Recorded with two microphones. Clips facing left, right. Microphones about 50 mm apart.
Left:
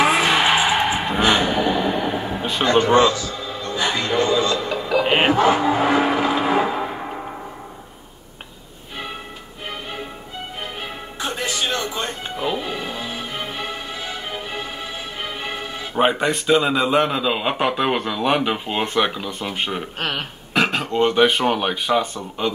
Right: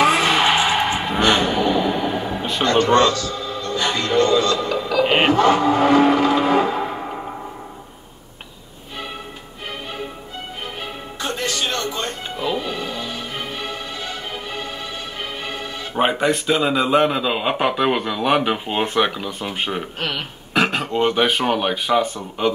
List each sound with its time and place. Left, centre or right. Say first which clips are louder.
0.0 s vehicle: right 1 dB; centre
5.0 s music: right 2 dB; centre
5.3 s cattle: right 1 dB; centre
11.1 s music: right 1 dB; centre
15.9 s a man's voice: even; centre
20.0 s speech: even; left
20.5 s a sound: right 1 dB; centre
20.8 s a man's voice: left 2 dB; centre
22.0 s speech: right 3 dB; right